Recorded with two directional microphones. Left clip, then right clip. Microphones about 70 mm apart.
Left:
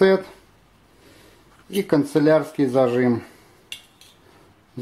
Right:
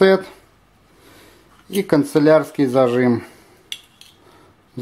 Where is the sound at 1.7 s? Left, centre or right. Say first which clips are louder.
Right 3 dB; right.